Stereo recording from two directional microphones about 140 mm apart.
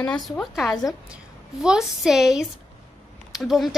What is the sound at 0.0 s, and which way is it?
A woman's voice, 5° left (ahead or behind).